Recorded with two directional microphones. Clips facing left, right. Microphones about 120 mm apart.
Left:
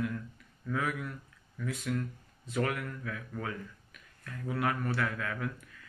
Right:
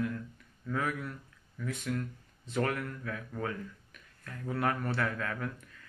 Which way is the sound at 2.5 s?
35° right (ahead or behind).